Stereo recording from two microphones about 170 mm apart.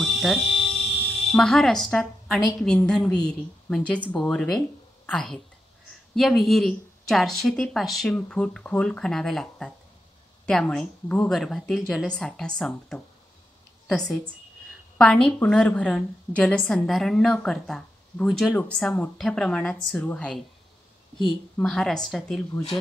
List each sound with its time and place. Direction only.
0.0 s a woman's voice: centre (ahead or behind)
21.5 s speech: 5° left (ahead or behind)